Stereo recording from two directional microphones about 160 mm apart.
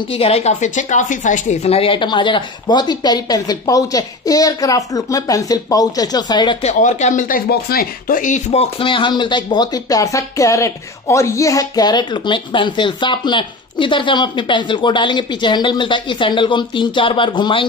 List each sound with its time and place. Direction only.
0.1 s speech: 40° left (ahead or behind)
6.6 s speech: 50° left (ahead or behind); by 17.6 s 30° left (ahead or behind)